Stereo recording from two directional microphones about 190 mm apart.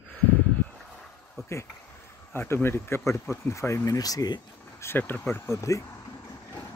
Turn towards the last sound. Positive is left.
turn(degrees=15)  # may be behind; listen again after turning